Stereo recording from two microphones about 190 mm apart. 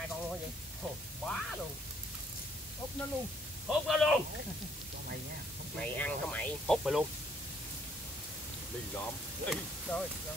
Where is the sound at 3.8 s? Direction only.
Centre (ahead or behind).